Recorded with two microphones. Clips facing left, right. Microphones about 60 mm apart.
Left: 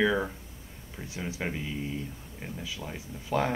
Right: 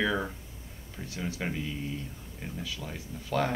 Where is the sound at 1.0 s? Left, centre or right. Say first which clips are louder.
Even; centre.